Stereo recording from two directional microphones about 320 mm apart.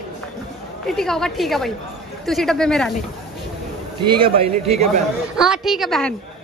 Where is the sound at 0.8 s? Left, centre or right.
Centre.